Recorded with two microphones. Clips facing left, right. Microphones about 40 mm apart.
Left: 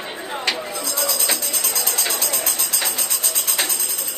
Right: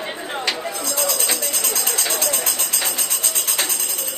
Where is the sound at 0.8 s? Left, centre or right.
Right.